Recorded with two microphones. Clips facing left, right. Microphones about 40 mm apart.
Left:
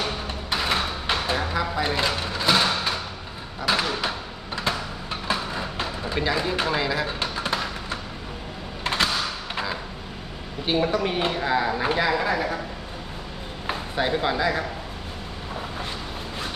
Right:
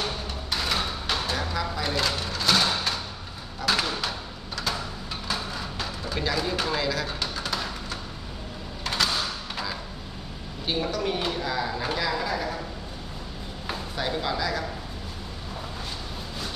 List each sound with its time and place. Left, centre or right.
0.5 s a sound: left
8.8 s door: left
10.6 s speech: left
13.7 s speech: left